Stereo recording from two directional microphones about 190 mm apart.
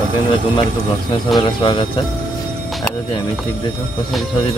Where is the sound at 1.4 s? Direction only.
25° left (ahead or behind).